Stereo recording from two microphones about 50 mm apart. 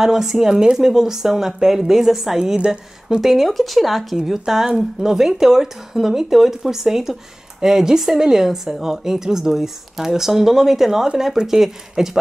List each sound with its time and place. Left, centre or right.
0.0 s a woman's voice: centre
2.5 s a woman's voice: centre
3.2 s a woman's voice: centre